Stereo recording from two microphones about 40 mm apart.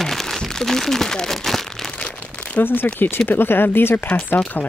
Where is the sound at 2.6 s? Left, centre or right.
Left.